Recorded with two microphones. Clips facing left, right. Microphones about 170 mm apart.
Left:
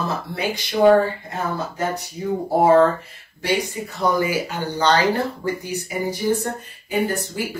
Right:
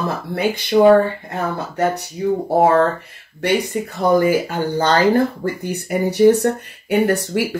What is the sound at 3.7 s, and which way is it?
Speech, 55° right (ahead or behind).